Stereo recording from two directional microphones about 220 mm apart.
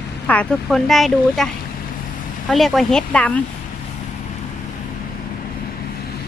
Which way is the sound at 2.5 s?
Centre (ahead or behind).